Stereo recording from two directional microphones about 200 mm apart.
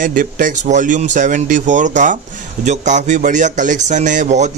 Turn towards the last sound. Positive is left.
turn(degrees=-35)  # may be behind; listen again after turning